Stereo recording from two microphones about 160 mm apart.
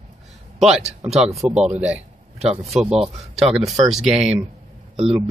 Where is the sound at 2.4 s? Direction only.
40° right (ahead or behind).